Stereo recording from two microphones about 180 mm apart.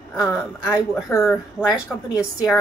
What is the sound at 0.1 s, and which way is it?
A woman's voice, centre (ahead or behind).